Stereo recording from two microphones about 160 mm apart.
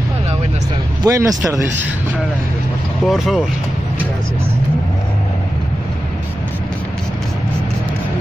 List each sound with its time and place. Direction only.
1.0 s speech: 20° right (ahead or behind)
3.1 s speech: centre (ahead or behind)